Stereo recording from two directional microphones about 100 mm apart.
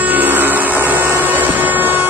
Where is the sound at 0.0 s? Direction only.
20° right (ahead or behind).